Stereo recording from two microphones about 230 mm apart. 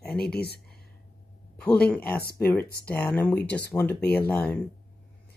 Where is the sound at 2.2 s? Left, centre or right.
Left.